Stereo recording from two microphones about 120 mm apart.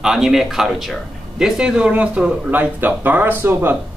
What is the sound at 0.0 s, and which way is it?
Speech, 5° right (ahead or behind).